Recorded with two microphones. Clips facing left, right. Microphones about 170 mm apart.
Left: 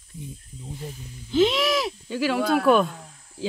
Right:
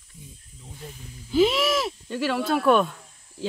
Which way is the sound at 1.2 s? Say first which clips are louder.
Even; 5° right (ahead or behind).